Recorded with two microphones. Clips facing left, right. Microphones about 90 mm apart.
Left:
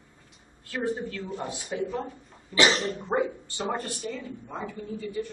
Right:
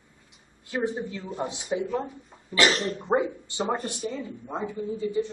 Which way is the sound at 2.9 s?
15° right (ahead or behind).